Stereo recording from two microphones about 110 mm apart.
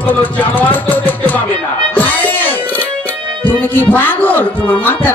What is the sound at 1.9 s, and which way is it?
Music, 15° left (ahead or behind).